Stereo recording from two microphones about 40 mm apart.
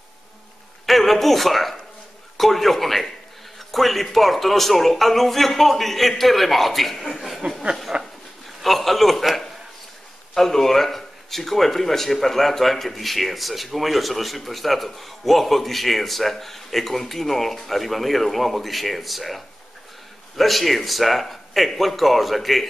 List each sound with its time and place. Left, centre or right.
0.8 s a man's voice: centre
7.9 s a sound: right
8.6 s speech: centre